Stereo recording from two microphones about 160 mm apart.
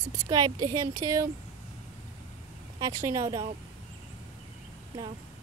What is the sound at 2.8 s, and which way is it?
Speech, 20° right (ahead or behind).